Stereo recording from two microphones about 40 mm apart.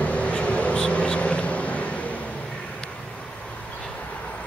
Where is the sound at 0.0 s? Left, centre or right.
Left.